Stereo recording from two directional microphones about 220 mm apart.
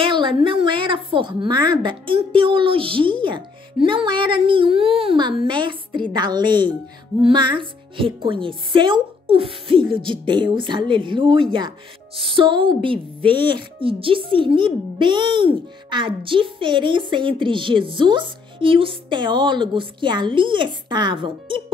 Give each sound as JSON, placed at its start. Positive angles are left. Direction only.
{"t": 0.0, "sound": "speech", "side_deg": -20}